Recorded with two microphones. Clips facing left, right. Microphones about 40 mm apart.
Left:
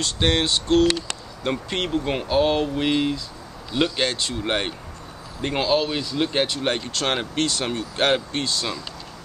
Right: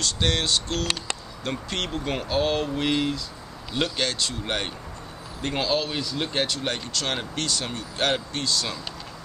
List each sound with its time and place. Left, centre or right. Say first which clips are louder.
0.0 s speech: left 4 dB; left
4.0 s speech: left 3 dB; left
6.4 s speech: left 4 dB; left